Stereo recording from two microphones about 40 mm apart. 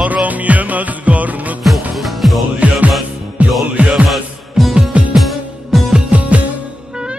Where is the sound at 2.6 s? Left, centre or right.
Right.